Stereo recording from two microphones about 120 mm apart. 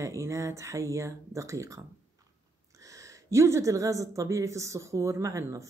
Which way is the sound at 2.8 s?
30° right (ahead or behind).